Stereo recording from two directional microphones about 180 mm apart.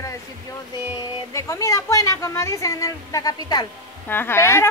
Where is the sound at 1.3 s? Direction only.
15° left (ahead or behind).